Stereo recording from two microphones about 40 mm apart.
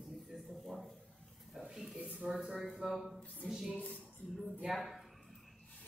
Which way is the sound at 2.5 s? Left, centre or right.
Centre.